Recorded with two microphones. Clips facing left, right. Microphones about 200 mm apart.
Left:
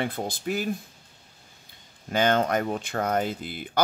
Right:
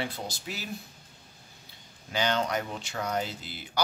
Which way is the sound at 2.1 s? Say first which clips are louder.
Left 6 dB; 50° left (ahead or behind).